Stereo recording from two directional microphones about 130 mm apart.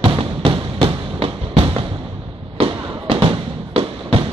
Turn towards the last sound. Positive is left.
turn(degrees=-45)  # may be behind; listen again after turning